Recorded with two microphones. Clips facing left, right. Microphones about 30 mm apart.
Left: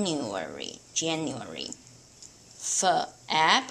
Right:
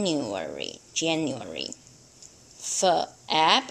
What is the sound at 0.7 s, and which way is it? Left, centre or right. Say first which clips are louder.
Speech: right 4 dB; centre.